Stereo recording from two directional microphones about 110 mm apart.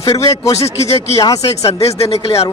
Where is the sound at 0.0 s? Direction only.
30° left (ahead or behind).